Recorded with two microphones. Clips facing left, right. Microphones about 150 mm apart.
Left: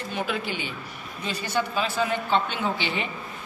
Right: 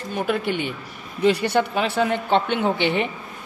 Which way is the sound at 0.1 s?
55° right (ahead or behind).